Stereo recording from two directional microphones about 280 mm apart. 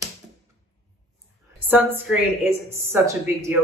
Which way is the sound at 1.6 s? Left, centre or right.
Centre.